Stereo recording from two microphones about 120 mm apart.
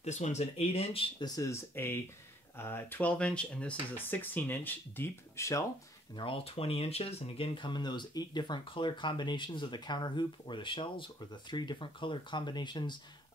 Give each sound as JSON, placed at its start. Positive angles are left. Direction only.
{"t": 0.0, "sound": "speech", "side_deg": 70}
{"t": 1.2, "sound": "speech", "side_deg": 30}
{"t": 6.1, "sound": "speech", "side_deg": 50}